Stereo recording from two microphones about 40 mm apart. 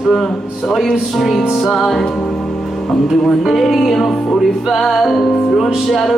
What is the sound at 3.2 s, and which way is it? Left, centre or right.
Music, centre.